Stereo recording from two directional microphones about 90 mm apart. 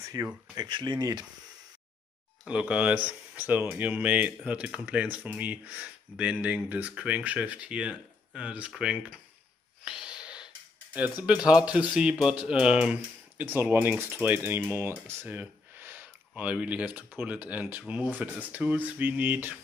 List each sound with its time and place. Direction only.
0.0 s speech: 40° right (ahead or behind)
0.7 s speech: 60° right (ahead or behind)
2.4 s speech: 10° right (ahead or behind)
9.8 s snort: 10° right (ahead or behind)
11.2 s speech: 10° right (ahead or behind)